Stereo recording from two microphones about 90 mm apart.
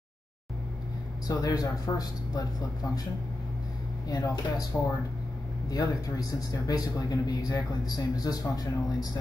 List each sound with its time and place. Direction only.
1.2 s speech: 45° left (ahead or behind)
4.1 s speech: 45° left (ahead or behind)